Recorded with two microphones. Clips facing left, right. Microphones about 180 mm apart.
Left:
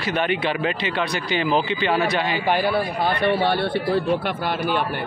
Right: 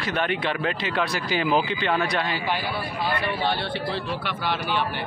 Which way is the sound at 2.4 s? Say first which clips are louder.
Left 7 dB; 55° left (ahead or behind).